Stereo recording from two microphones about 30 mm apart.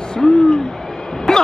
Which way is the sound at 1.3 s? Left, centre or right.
Left.